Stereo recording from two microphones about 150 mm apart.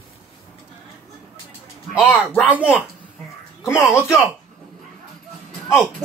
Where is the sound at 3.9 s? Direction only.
20° left (ahead or behind).